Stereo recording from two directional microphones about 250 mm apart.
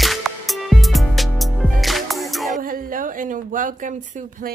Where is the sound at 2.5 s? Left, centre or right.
Right.